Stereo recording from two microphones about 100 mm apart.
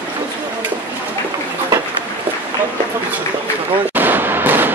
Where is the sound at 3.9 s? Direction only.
20° right (ahead or behind).